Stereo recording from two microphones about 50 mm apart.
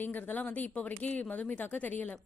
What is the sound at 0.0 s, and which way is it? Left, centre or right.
A woman's voice, left.